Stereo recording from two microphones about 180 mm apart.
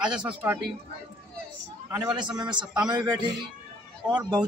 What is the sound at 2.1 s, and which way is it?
Speech, 25° right (ahead or behind).